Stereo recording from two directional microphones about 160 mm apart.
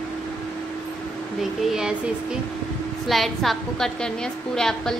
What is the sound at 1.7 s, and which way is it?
A woman's voice, 5° right (ahead or behind).